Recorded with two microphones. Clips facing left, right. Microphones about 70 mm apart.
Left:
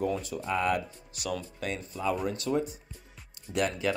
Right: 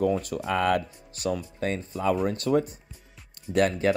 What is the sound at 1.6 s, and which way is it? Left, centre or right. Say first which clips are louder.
Speech: right 6 dB; right.